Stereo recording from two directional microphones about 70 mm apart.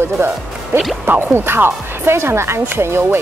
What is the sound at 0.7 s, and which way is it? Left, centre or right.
A woman's voice, right.